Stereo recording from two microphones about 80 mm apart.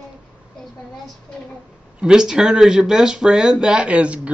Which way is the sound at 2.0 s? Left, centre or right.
Centre.